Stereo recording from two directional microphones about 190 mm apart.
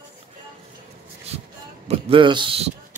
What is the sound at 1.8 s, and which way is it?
Speech, 30° right (ahead or behind).